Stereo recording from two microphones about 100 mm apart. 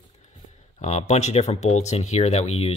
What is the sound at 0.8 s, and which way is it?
Speech, 90° left.